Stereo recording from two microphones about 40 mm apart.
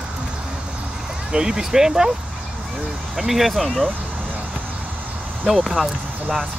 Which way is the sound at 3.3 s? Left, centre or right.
Centre.